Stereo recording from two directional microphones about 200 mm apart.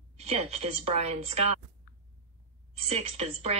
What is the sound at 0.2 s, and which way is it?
A woman's voice, 35° right (ahead or behind).